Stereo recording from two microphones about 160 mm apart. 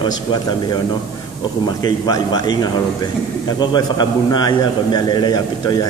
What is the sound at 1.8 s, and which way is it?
A man's voice, 25° left (ahead or behind).